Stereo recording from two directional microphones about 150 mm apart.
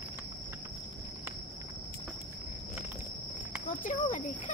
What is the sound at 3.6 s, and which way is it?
Cricket, 65° left (ahead or behind).